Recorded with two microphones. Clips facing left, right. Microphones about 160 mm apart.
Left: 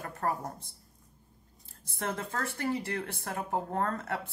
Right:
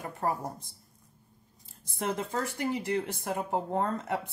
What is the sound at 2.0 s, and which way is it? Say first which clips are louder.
Speech: right 3 dB; 15° right (ahead or behind).